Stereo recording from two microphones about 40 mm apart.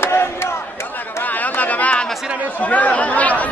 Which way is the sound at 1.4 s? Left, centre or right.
Left.